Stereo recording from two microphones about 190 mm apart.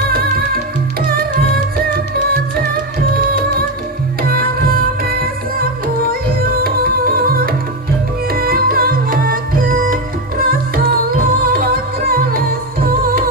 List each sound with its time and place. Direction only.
1.0 s music: 50° right (ahead or behind)
4.2 s music: 50° right (ahead or behind)